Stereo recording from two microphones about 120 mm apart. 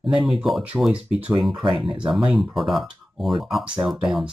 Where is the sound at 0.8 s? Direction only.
5° right (ahead or behind).